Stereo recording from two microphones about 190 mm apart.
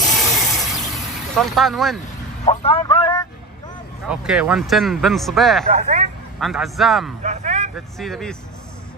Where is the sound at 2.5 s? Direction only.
30° left (ahead or behind).